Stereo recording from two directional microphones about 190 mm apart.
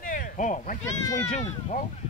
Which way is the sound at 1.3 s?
40° left (ahead or behind).